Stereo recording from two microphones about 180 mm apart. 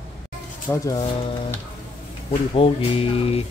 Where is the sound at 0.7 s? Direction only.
20° left (ahead or behind).